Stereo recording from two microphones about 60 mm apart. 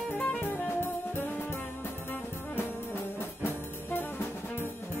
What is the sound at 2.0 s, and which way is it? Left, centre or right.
Brass instrument, left.